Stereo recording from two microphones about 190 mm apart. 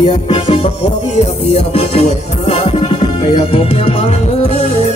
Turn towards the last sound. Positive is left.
turn(degrees=35)  # may be behind; listen again after turning